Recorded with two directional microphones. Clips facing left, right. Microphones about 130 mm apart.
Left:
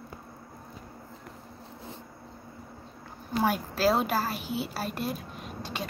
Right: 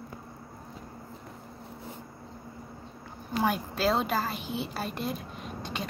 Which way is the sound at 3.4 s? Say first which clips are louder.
Left 2 dB; 5° left (ahead or behind).